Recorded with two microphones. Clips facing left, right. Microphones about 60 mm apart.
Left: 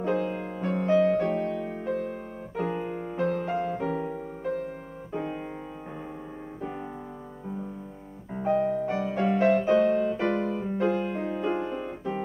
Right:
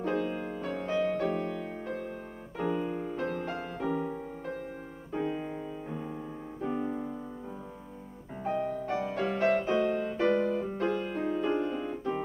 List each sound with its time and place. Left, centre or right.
0.0 s music: centre
6.6 s music: centre
8.4 s music: centre
10.4 s music: centre